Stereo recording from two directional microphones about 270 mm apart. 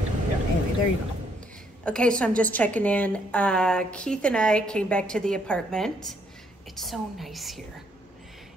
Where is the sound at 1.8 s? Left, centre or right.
Centre.